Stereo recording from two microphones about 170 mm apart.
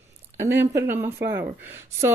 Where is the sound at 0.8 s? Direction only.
15° right (ahead or behind).